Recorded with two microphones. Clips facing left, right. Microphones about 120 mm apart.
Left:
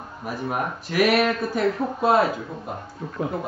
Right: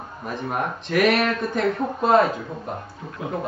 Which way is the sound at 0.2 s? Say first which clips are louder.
Even; 5° left (ahead or behind).